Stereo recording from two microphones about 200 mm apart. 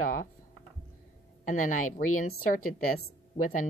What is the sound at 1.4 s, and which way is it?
Speech, 40° left (ahead or behind).